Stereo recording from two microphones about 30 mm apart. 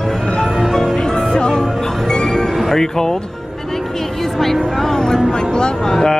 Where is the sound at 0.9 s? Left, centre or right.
Left.